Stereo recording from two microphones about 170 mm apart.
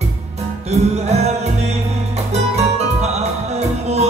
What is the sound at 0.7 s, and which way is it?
Music, 40° right (ahead or behind).